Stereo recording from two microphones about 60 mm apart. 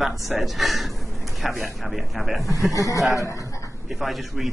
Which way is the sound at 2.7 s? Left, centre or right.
Left.